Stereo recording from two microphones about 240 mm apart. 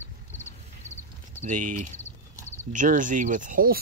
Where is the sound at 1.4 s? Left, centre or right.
Right.